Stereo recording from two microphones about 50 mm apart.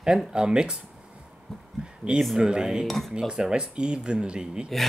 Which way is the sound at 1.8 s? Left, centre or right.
Centre.